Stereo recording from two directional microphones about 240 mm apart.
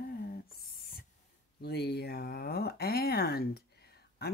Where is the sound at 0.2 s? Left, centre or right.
Left.